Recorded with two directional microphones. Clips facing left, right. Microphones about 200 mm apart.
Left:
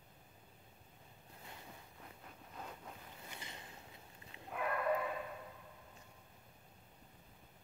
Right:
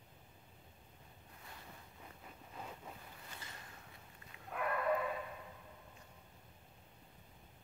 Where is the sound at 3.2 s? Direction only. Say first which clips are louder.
Left 4 dB; 15° left (ahead or behind).